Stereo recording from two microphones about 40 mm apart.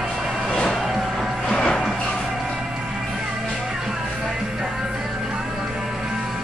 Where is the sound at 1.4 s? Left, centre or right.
Left.